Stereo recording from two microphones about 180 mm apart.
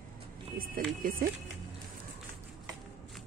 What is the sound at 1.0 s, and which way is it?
Speech, 50° right (ahead or behind).